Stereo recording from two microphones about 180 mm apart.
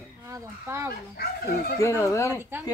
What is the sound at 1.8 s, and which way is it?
Speech, 15° left (ahead or behind).